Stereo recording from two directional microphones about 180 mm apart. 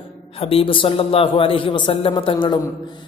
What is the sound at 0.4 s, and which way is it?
A man's voice, 30° left (ahead or behind).